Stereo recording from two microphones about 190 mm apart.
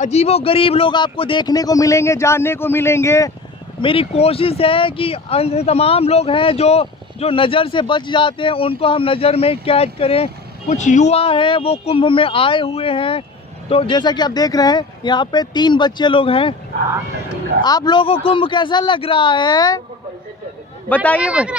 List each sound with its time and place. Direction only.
0.0 s speech: 35° left (ahead or behind); by 3.3 s 15° left (ahead or behind)
3.8 s speech: 30° left (ahead or behind)
17.6 s speech: 20° left (ahead or behind)
20.9 s speech: 10° left (ahead or behind)
21.2 s speech: 5° right (ahead or behind)